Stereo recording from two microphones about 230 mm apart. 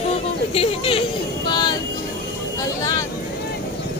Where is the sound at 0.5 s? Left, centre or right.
Left.